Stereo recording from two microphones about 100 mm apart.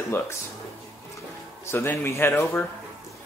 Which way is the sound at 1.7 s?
25° left (ahead or behind).